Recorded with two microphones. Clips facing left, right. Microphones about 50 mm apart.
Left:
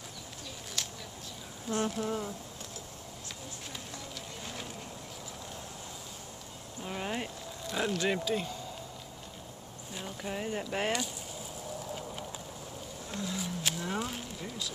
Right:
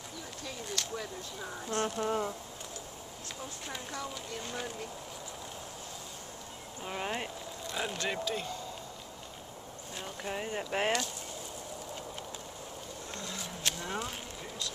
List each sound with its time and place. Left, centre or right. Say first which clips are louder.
0.8 s a sound: left 2 dB; centre
1.7 s speech: left 1 dB; centre
2.0 s speech: right 3 dB; right
6.8 s speech: even; centre
9.9 s speech: even; centre
13.1 s speech: left 6 dB; centre
13.6 s a sound: right 1 dB; centre